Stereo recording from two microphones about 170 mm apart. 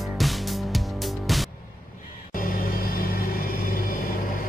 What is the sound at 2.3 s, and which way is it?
Music, 55° left (ahead or behind).